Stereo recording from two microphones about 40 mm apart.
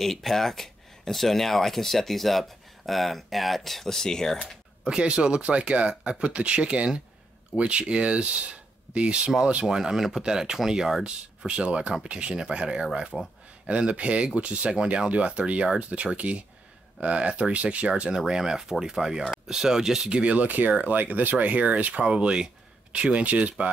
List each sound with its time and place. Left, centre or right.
0.0 s speech: centre
4.8 s speech: right
9.7 s speech: centre
11.1 s speech: right
13.1 s speech: centre
13.7 s speech: right
18.1 s speech: centre
20.1 s speech: right
20.3 s speech: right
22.0 s speech: right